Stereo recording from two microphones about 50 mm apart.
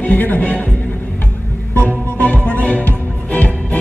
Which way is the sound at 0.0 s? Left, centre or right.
Left.